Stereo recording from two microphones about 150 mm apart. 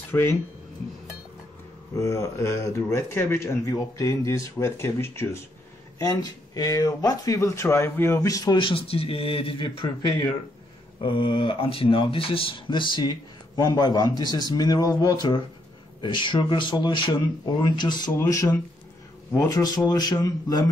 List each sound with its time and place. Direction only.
0.1 s speech: 15° left (ahead or behind)
2.0 s speech: 20° left (ahead or behind); by 9.8 s 35° left (ahead or behind)
11.0 s speech: 30° left (ahead or behind)